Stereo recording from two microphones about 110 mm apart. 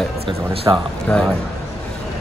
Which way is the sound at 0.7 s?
40° right (ahead or behind).